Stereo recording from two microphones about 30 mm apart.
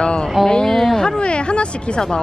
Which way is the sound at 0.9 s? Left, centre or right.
Left.